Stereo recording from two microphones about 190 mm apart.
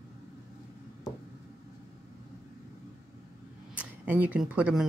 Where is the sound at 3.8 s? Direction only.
10° right (ahead or behind).